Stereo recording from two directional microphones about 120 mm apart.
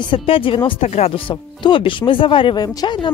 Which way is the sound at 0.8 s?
60° left (ahead or behind).